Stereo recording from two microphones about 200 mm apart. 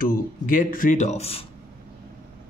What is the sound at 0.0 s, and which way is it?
Speech, 45° left (ahead or behind).